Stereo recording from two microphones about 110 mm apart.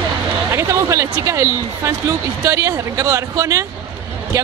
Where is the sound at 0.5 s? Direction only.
30° right (ahead or behind).